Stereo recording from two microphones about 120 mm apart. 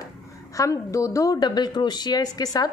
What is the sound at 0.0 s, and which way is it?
A woman's voice, 25° left (ahead or behind).